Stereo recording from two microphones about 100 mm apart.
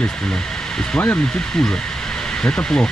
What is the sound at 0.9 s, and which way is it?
Speech, 20° left (ahead or behind).